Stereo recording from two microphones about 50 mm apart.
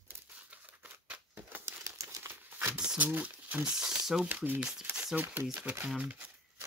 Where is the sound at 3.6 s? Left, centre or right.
Centre.